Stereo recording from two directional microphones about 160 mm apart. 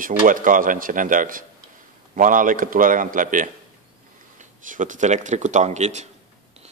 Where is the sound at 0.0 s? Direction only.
60° right (ahead or behind).